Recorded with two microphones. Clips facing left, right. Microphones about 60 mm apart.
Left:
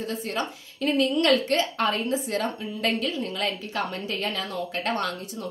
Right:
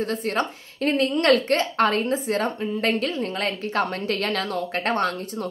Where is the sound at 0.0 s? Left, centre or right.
Right.